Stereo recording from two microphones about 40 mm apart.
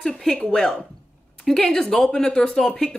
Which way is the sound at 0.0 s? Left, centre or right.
Centre.